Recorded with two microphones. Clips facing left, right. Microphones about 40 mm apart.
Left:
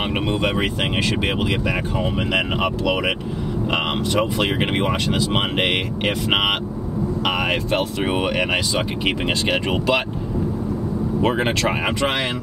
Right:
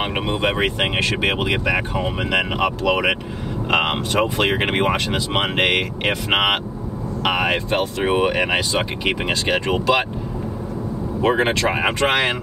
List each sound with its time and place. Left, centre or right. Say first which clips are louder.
0.4 s speech: right 1 dB; right
2.6 s speech: right 2 dB; right
6.0 s speech: right 1 dB; right
7.7 s speech: right 2 dB; centre
11.1 s speech: right 3 dB; centre
12.0 s speech: right 5 dB; right